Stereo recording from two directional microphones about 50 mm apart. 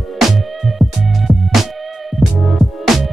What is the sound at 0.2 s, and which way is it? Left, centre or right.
Music, centre.